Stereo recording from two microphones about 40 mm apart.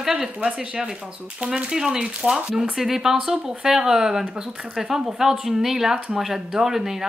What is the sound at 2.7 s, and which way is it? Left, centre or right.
Speech, centre.